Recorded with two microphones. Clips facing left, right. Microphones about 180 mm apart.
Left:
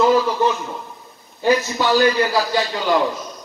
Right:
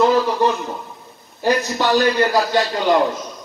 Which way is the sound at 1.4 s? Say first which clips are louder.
Left 1 dB; centre (ahead or behind).